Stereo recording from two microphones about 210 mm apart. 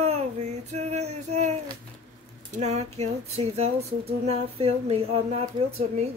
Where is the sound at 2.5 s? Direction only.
30° right (ahead or behind).